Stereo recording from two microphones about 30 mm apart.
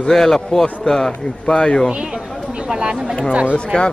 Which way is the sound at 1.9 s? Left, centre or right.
Right.